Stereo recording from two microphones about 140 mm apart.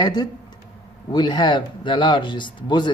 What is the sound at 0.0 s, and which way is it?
Speech, 30° left (ahead or behind).